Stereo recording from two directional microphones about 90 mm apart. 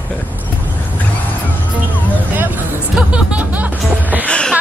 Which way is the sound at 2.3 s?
20° right (ahead or behind).